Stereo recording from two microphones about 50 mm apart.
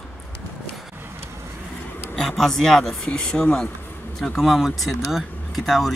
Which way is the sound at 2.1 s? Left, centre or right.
Centre.